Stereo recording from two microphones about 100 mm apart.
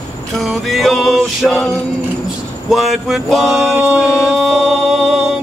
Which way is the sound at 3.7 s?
5° right (ahead or behind).